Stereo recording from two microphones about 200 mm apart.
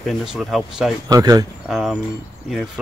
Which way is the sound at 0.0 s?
Centre (ahead or behind).